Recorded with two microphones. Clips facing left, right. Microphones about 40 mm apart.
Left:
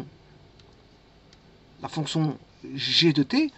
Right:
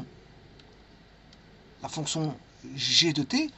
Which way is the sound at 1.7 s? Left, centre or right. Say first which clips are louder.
Left 4 dB; centre.